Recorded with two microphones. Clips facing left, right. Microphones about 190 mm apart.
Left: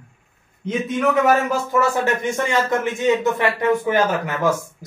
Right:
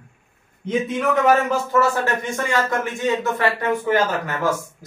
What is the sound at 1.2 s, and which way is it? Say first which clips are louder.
Speech: even; 10° left (ahead or behind).